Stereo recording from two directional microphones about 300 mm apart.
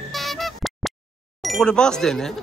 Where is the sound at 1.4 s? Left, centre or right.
Centre.